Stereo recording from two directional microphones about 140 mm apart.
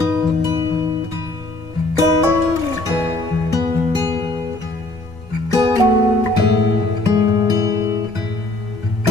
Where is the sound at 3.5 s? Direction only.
25° right (ahead or behind).